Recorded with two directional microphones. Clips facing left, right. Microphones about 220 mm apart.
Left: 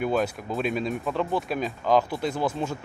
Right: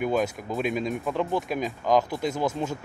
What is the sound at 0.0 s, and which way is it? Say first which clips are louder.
Speech: even; 15° right (ahead or behind).